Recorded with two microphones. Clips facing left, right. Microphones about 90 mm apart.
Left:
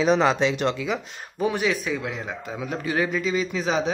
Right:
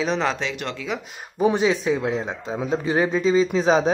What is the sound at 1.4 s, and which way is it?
A man's voice, 20° right (ahead or behind).